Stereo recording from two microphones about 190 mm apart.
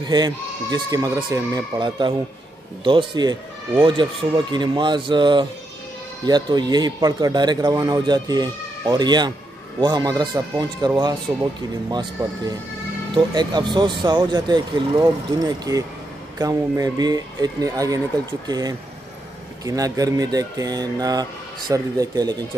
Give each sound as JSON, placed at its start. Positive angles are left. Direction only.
{"t": 0.0, "sound": "a man's voice", "side_deg": -20}
{"t": 12.2, "sound": "a man's voice", "side_deg": -20}